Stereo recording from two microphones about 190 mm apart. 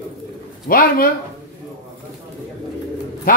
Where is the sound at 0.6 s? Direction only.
50° left (ahead or behind).